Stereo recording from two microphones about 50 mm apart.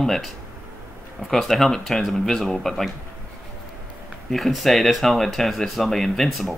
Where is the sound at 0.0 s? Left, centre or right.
Centre.